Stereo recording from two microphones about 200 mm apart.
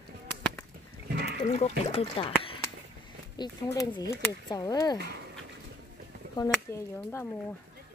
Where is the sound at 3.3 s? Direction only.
20° left (ahead or behind).